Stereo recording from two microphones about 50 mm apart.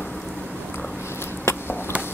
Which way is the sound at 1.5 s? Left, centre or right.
Left.